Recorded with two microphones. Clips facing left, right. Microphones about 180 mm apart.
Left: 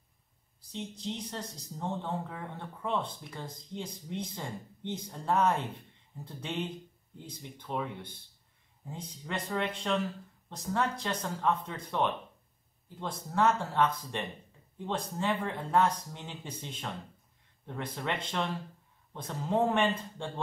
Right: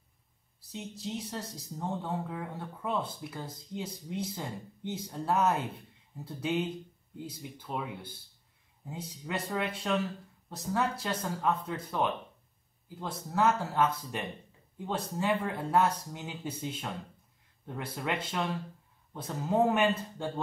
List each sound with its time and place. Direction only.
0.6 s speech: 5° right (ahead or behind)